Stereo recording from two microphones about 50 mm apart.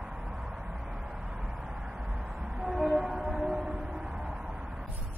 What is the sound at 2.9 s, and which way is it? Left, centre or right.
Train, centre.